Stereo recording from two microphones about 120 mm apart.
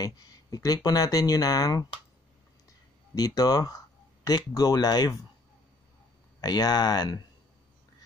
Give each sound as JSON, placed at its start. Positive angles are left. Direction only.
{"t": 0.0, "sound": "speech", "side_deg": 30}
{"t": 3.2, "sound": "speech", "side_deg": 30}
{"t": 6.4, "sound": "speech", "side_deg": 35}